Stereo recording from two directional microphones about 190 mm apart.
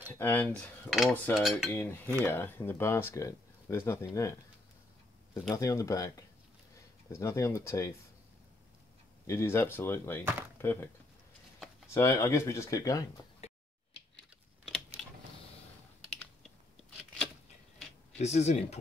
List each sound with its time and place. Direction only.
0.1 s speech: 10° left (ahead or behind)
1.3 s cutlery: 5° right (ahead or behind)
1.7 s speech: 10° left (ahead or behind)
5.5 s speech: 15° left (ahead or behind)
9.2 s speech: 15° left (ahead or behind)
11.9 s speech: 15° left (ahead or behind)
13.4 s a sound: 30° left (ahead or behind)
18.2 s speech: 35° left (ahead or behind)